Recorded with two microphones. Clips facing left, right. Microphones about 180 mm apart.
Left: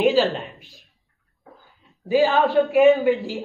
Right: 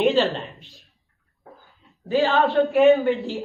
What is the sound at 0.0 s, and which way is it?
Speech, centre (ahead or behind).